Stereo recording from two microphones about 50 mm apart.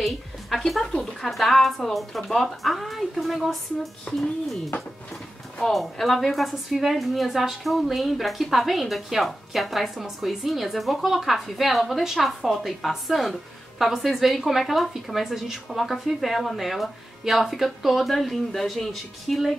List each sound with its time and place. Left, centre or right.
0.0 s a sound: centre
2.2 s a woman's voice: centre
5.7 s a woman's voice: centre